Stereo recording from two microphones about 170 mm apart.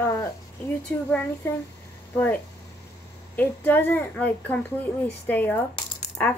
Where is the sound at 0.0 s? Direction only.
15° left (ahead or behind).